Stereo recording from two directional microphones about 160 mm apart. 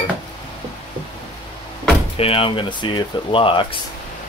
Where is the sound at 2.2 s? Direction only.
35° left (ahead or behind).